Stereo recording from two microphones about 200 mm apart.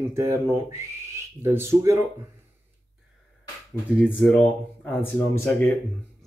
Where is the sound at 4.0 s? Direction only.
5° left (ahead or behind).